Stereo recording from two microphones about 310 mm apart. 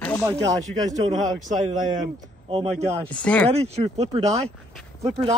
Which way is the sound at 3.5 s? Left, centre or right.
Centre.